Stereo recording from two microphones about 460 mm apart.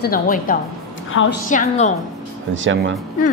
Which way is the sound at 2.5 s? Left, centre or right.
Right.